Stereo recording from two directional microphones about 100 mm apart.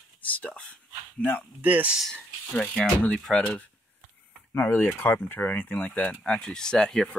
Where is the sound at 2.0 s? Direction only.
10° left (ahead or behind).